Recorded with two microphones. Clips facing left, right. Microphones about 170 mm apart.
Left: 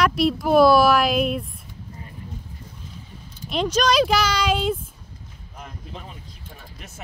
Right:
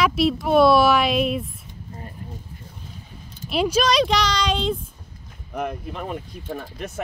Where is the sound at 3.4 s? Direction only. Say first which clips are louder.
Right 1 dB; 10° right (ahead or behind).